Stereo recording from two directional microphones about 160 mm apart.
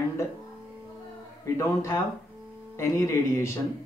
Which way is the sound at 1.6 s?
20° left (ahead or behind).